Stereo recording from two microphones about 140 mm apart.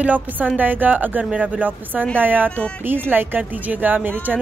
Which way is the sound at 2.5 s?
5° left (ahead or behind).